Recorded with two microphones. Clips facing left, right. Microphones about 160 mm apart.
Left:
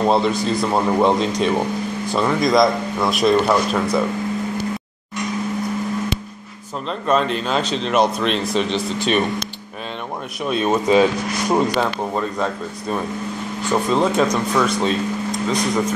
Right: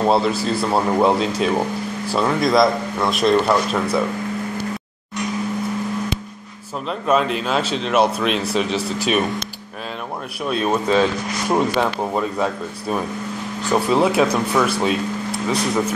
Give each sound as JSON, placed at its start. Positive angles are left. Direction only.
{"t": 0.0, "sound": "speech", "side_deg": -5}
{"t": 6.9, "sound": "speech", "side_deg": -5}
{"t": 10.4, "sound": "speech", "side_deg": 0}